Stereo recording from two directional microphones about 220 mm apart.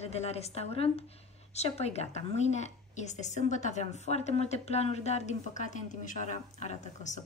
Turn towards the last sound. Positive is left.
turn(degrees=30)  # may be behind; listen again after turning